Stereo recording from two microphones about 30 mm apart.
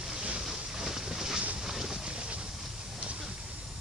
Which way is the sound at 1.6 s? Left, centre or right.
Centre.